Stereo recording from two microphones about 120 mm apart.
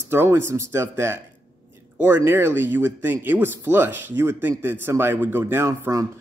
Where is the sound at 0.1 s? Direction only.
20° right (ahead or behind).